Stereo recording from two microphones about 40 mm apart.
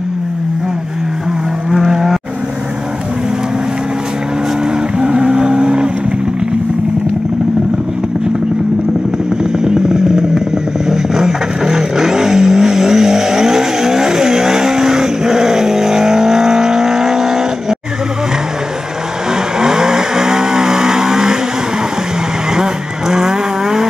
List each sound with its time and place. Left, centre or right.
1.7 s vehicle: centre
4.9 s vehicle: right
9.4 s vehicle: centre
19.6 s vehicle: centre
22.6 s vehicle: centre